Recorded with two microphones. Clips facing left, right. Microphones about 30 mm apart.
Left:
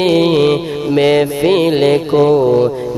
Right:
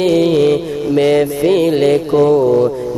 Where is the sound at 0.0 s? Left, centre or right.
Left.